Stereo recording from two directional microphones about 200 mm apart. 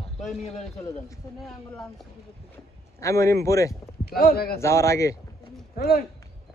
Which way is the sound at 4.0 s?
50° left (ahead or behind).